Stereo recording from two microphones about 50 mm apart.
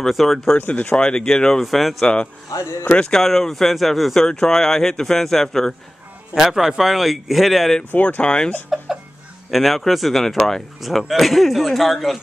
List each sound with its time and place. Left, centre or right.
0.0 s speech: centre
0.6 s speech: left
0.9 s speech: centre
6.3 s a man's voice: centre
7.9 s speech: left
8.2 s speech: centre
8.7 s a sound: centre
9.5 s speech: centre